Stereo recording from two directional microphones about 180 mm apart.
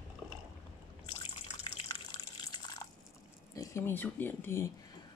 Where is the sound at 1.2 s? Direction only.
25° left (ahead or behind).